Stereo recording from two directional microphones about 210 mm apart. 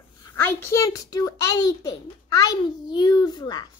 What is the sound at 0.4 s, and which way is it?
A child's voice, 10° left (ahead or behind).